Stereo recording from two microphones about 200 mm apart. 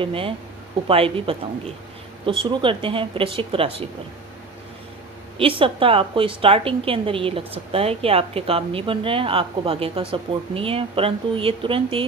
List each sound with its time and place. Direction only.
0.0 s a woman's voice: 25° right (ahead or behind)
5.4 s a woman's voice: 25° right (ahead or behind)